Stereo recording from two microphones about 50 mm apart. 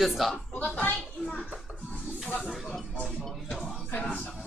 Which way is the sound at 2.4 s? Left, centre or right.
Centre.